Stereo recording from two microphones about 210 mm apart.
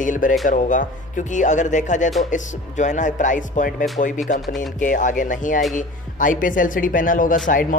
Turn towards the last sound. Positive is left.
turn(degrees=40)  # may be behind; listen again after turning